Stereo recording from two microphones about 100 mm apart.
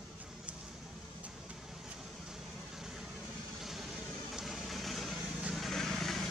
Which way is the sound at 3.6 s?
5° right (ahead or behind).